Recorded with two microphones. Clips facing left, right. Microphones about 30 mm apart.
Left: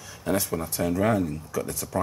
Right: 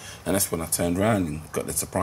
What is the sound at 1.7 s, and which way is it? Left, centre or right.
Speech, centre.